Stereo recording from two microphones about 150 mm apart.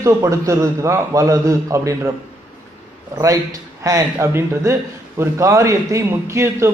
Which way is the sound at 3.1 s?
25° right (ahead or behind).